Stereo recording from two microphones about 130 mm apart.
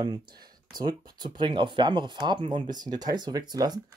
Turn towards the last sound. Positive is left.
turn(degrees=-30)  # may be behind; listen again after turning